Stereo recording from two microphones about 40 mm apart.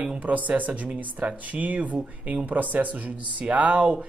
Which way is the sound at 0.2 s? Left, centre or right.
Right.